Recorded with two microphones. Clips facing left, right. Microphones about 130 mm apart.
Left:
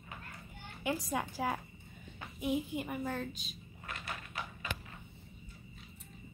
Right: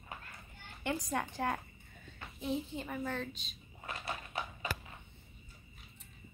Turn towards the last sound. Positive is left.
turn(degrees=-30)  # may be behind; listen again after turning